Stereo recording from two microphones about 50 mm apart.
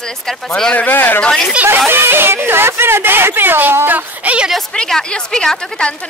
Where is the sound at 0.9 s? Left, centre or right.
Left.